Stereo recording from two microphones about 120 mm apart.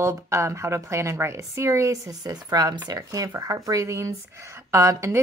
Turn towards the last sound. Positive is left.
turn(degrees=-25)  # may be behind; listen again after turning